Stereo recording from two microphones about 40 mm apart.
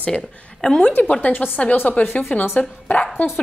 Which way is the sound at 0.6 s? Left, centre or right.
Centre.